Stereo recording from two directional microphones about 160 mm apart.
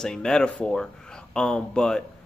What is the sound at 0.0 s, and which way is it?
Speech, 5° left (ahead or behind).